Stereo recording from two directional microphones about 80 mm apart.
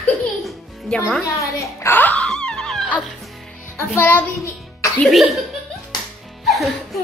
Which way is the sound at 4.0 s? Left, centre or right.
Left.